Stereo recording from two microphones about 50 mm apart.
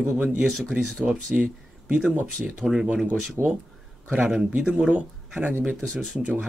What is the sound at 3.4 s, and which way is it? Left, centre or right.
Speech, right.